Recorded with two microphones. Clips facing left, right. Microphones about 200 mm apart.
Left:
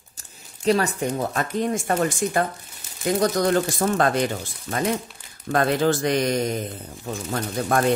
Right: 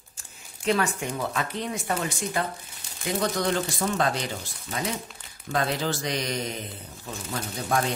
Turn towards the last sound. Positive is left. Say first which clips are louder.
# left 5 dB
turn(degrees=50)  # may be behind; listen again after turning